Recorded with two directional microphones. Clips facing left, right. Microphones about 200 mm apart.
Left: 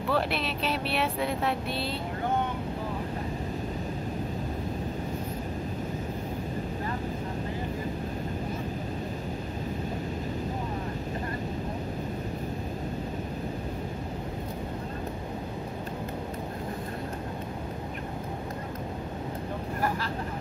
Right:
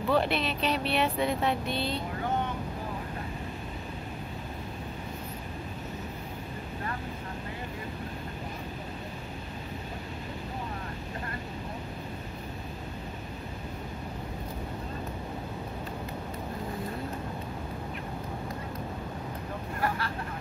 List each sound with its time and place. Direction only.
0.1 s speech: centre (ahead or behind)